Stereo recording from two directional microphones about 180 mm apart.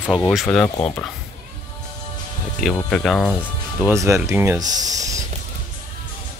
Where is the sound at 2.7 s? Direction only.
5° left (ahead or behind).